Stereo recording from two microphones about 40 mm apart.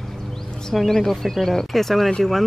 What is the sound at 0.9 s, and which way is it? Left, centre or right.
Speech, centre.